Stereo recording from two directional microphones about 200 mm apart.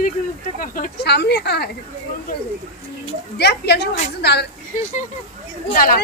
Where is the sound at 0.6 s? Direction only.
45° left (ahead or behind).